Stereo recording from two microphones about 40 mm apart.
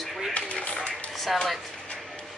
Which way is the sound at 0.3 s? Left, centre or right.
Left.